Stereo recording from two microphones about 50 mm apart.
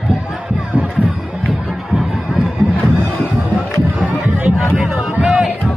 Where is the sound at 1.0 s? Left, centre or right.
Right.